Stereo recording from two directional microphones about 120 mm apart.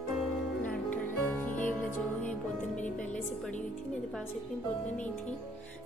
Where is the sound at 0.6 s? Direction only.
15° left (ahead or behind).